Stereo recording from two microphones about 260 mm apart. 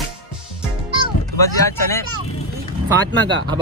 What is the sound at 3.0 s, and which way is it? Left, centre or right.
Speech, right.